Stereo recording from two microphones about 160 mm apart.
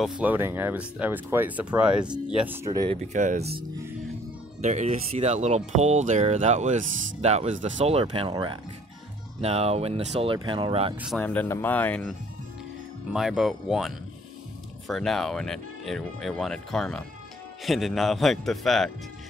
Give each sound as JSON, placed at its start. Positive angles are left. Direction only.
{"t": 0.0, "sound": "speech", "side_deg": -5}
{"t": 2.9, "sound": "speech", "side_deg": -45}
{"t": 11.1, "sound": "speech", "side_deg": 10}